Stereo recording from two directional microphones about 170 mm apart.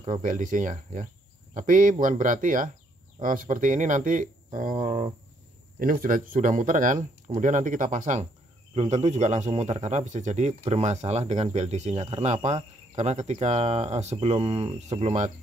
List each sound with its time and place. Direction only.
0.0 s speech: 45° right (ahead or behind)
4.8 s speech: 30° right (ahead or behind)
5.8 s speech: 55° right (ahead or behind)